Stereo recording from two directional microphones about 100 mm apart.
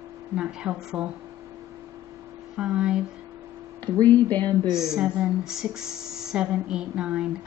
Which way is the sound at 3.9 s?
25° left (ahead or behind).